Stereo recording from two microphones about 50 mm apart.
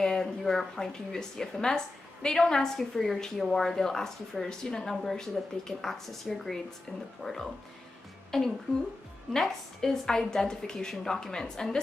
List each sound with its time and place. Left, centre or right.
0.0 s a woman's voice: centre
7.2 s speech: centre
8.3 s a woman's voice: centre